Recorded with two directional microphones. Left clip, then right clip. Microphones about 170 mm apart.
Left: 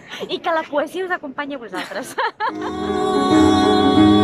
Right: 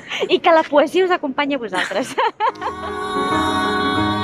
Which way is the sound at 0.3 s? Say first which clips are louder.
Right 7 dB; 10° right (ahead or behind).